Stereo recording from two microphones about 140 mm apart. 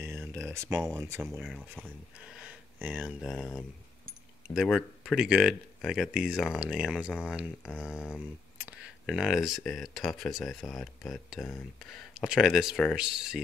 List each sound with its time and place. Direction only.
0.0 s a sound: 15° right (ahead or behind)
1.8 s speech: 10° right (ahead or behind)
4.6 s speech: centre (ahead or behind)